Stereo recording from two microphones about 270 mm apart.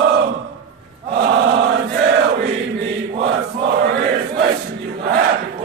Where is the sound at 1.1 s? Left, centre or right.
Right.